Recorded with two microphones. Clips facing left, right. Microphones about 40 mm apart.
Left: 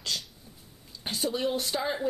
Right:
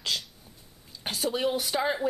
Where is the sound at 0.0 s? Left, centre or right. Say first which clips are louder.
Right 3 dB; centre.